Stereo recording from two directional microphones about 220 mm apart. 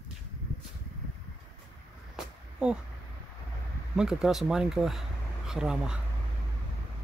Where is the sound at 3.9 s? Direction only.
Centre (ahead or behind).